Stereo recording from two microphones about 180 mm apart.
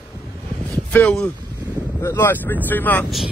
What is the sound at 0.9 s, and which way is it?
Speech, 5° left (ahead or behind).